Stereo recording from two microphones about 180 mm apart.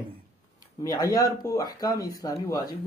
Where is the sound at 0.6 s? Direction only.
20° left (ahead or behind).